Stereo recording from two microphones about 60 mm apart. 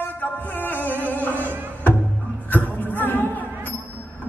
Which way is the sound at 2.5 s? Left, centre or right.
Left.